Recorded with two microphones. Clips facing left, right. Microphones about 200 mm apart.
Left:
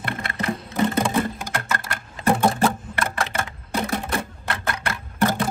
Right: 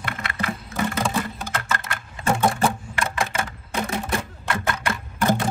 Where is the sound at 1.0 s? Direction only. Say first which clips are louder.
Left 3 dB; 20° left (ahead or behind).